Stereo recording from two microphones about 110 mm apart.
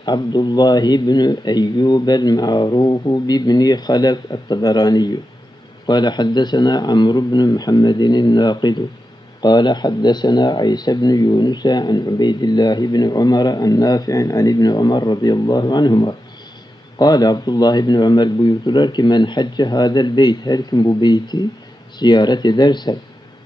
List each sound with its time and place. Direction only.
0.0 s speech: 40° left (ahead or behind)